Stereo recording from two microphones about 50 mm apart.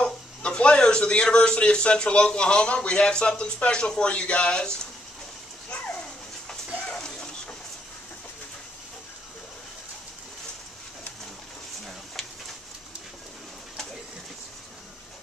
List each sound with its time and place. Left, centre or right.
0.0 s a man's voice: centre
6.9 s bird: centre